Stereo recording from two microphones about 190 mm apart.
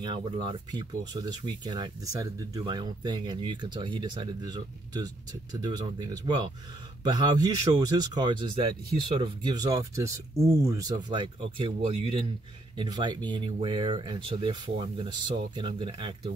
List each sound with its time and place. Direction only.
0.0 s speech: 25° right (ahead or behind)